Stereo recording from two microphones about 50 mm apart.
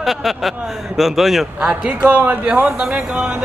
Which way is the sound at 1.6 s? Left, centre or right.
Right.